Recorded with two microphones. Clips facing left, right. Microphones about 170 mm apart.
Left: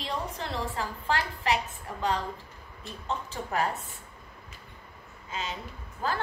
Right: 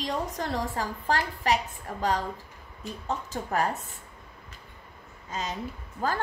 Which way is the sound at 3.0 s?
40° right (ahead or behind).